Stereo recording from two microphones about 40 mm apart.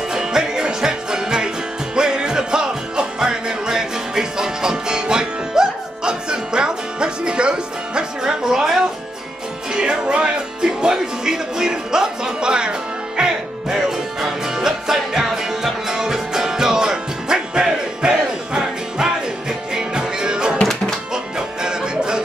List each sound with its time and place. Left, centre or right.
0.1 s music: centre
9.7 s music: right